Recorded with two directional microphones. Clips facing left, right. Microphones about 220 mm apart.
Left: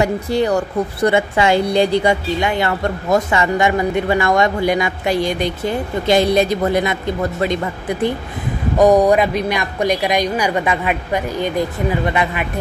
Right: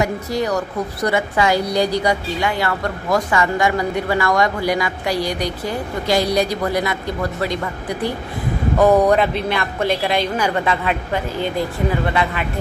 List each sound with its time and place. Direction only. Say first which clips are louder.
0.0 s speech: left 4 dB; 30° left (ahead or behind)
8.7 s speech: left 2 dB; 15° left (ahead or behind)